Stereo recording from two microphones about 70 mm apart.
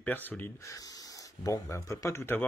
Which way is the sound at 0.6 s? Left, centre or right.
Left.